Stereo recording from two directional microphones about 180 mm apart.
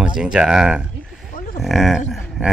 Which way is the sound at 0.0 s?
5° right (ahead or behind).